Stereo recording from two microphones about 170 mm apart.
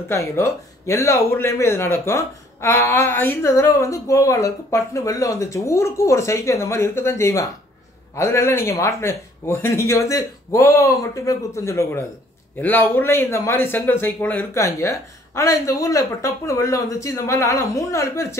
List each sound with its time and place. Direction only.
0.1 s speech: 15° left (ahead or behind)